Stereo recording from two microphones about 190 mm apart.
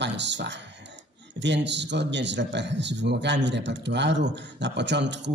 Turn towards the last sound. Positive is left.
turn(degrees=-65)  # may be behind; listen again after turning